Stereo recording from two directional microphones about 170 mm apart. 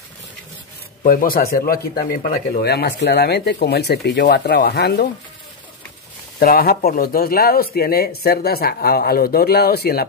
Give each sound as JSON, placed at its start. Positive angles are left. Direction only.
{"t": 1.0, "sound": "speech", "side_deg": 55}
{"t": 4.6, "sound": "speech", "side_deg": 65}
{"t": 6.4, "sound": "speech", "side_deg": 60}